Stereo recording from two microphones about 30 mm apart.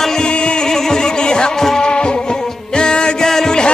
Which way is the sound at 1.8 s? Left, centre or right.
Left.